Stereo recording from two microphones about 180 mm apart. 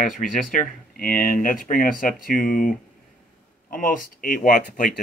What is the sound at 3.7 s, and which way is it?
Speech, 50° left (ahead or behind).